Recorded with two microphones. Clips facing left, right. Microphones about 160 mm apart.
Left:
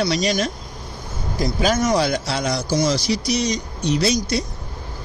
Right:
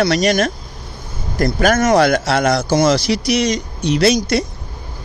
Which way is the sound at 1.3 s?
60° right (ahead or behind).